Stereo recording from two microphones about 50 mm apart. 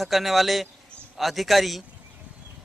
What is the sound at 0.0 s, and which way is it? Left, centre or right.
A man's voice, centre.